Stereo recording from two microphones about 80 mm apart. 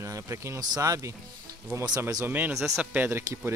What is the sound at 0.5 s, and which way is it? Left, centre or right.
Speech, right.